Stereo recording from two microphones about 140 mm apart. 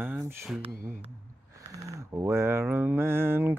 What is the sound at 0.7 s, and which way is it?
Speech, 80° right.